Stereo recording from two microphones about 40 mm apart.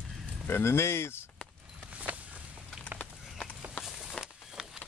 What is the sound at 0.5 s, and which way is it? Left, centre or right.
Speech, left.